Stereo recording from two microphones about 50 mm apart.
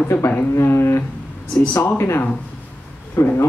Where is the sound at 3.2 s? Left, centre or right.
Left.